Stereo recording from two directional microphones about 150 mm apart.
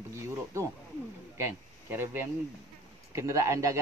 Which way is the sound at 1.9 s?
15° right (ahead or behind).